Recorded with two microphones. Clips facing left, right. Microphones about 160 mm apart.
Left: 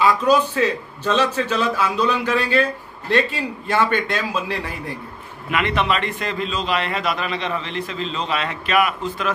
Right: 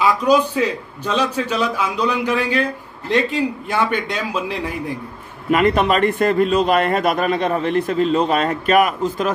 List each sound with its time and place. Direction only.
0.0 s a man's voice: 15° right (ahead or behind)
5.5 s a man's voice: 40° right (ahead or behind)